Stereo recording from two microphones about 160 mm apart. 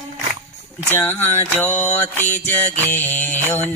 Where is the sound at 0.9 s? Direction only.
15° left (ahead or behind).